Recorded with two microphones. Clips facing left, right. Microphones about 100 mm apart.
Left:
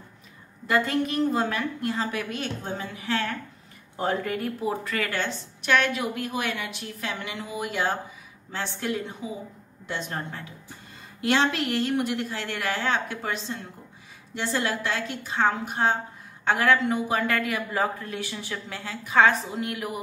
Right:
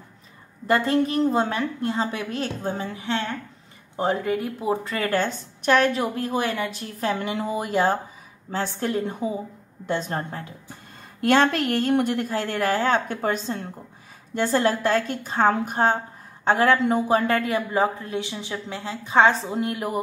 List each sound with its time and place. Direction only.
0.7 s a woman's voice: 35° right (ahead or behind)
11.1 s a woman's voice: 50° right (ahead or behind)
16.4 s a woman's voice: 30° right (ahead or behind)